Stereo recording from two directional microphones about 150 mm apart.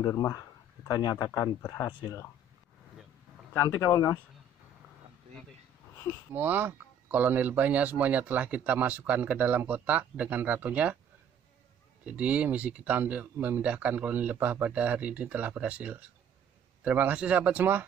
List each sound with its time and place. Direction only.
0.0 s speech: 25° left (ahead or behind)
3.5 s speech: 20° left (ahead or behind)
6.3 s speech: 15° right (ahead or behind)
12.0 s speech: 10° right (ahead or behind)